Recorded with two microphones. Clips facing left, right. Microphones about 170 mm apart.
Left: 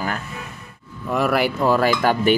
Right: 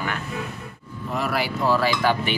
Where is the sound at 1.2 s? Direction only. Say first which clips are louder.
Left 5 dB; 55° left (ahead or behind).